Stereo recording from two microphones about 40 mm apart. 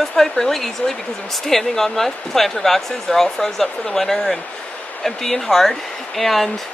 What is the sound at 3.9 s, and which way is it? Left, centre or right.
Speech, centre.